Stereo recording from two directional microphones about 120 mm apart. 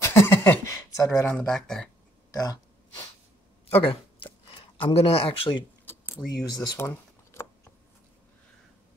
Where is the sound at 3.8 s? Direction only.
45° left (ahead or behind).